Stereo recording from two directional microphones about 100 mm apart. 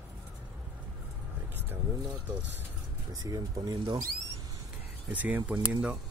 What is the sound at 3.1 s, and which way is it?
Speech, 40° right (ahead or behind).